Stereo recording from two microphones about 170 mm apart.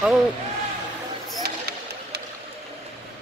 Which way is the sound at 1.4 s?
65° right (ahead or behind).